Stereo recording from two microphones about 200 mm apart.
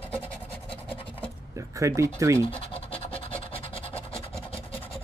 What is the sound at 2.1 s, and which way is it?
Speech, 15° right (ahead or behind).